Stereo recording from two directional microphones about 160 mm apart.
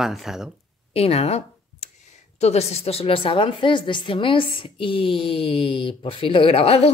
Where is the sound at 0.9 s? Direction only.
40° left (ahead or behind).